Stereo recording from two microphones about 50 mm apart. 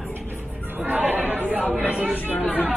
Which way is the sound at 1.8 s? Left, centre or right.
Right.